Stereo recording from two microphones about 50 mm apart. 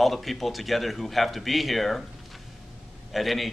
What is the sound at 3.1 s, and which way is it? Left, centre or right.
Speech, centre.